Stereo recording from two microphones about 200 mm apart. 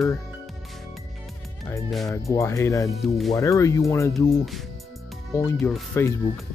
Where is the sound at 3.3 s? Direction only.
15° left (ahead or behind).